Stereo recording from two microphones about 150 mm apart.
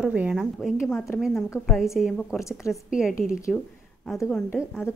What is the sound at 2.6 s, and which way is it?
Speech, 20° left (ahead or behind).